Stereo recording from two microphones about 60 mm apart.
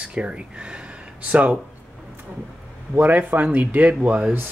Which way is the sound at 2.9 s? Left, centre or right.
Right.